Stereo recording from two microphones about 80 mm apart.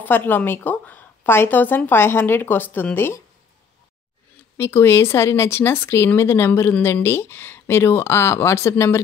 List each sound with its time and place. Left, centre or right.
0.0 s speech: left
4.6 s speech: left